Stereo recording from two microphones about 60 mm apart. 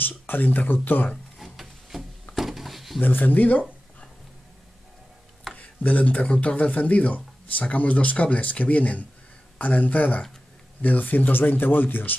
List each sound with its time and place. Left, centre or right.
0.0 s speech: left
1.4 s wood: centre
2.3 s a sound: centre
3.0 s speech: left
5.5 s a sound: centre
5.9 s speech: left